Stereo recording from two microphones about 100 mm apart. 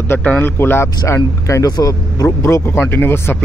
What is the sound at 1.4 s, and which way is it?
A man's voice, 35° left (ahead or behind).